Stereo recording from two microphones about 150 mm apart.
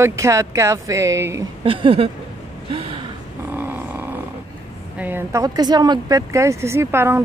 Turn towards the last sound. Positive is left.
turn(degrees=-15)  # may be behind; listen again after turning